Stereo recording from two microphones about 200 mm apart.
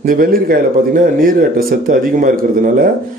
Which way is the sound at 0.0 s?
45° right (ahead or behind).